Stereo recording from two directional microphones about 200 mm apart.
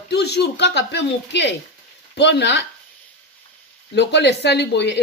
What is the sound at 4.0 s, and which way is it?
Speech, 60° left (ahead or behind).